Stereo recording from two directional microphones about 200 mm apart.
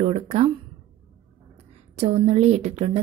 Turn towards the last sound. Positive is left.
turn(degrees=-30)  # may be behind; listen again after turning